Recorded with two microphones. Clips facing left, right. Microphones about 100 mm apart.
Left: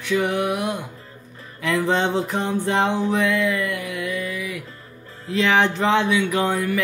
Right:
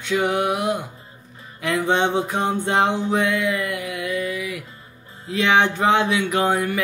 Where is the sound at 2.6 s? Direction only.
20° right (ahead or behind).